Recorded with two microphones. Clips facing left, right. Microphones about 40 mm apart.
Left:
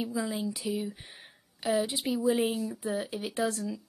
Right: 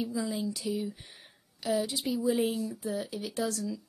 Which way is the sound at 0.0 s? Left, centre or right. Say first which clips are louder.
Even; left.